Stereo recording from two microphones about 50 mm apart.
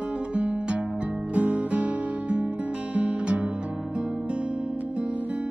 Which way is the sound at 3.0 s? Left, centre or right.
Right.